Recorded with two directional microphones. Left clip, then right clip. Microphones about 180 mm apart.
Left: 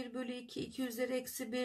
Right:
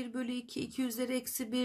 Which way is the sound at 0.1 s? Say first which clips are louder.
Right 4 dB; 25° right (ahead or behind).